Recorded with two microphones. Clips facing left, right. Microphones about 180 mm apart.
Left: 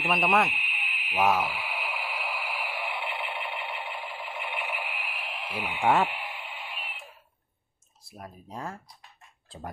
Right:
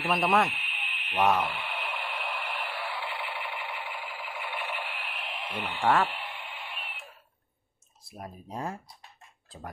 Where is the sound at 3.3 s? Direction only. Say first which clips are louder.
Left 2 dB; centre (ahead or behind).